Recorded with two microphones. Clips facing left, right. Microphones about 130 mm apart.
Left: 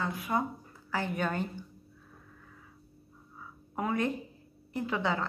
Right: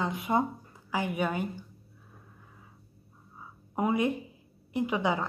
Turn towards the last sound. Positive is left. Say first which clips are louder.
# right 3 dB
turn(degrees=-15)  # may be behind; listen again after turning